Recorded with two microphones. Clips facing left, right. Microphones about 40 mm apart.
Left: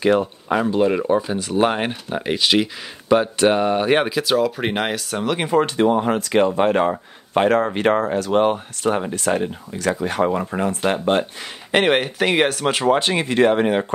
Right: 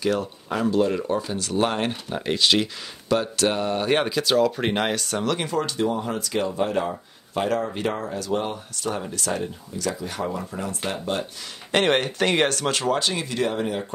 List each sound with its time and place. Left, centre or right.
0.0 s speech: left; by 2.7 s centre
3.1 s speech: left
5.5 s speech: left
9.7 s speech: left
11.7 s speech: centre; by 13.9 s left